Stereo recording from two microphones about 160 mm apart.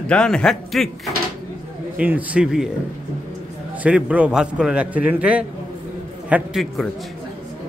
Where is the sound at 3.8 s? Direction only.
10° right (ahead or behind).